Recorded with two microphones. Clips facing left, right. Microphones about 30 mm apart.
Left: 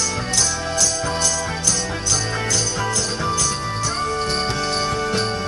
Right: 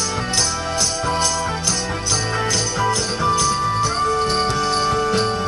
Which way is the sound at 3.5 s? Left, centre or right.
Centre.